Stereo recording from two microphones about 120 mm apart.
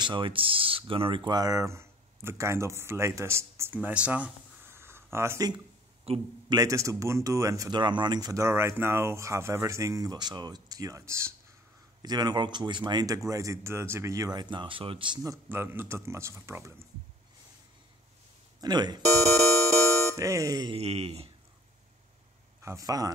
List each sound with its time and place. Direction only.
0.0 s speech: 45° right (ahead or behind); by 4.3 s 10° right (ahead or behind)
4.7 s a sound: 20° right (ahead or behind)
6.1 s speech: 55° right (ahead or behind)
6.5 s speech: 30° right (ahead or behind)
7.7 s speech: 40° right (ahead or behind); by 11.3 s 20° right (ahead or behind)
12.0 s speech: 35° right (ahead or behind)
15.4 s speech: 20° right (ahead or behind)
18.6 s speech: 35° right (ahead or behind)
20.2 s speech: 25° right (ahead or behind)
20.7 s speech: 60° right (ahead or behind)
22.6 s speech: 25° right (ahead or behind)